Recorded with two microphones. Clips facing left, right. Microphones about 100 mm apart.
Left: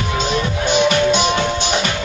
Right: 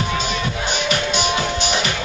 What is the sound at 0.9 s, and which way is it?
Music, 20° left (ahead or behind).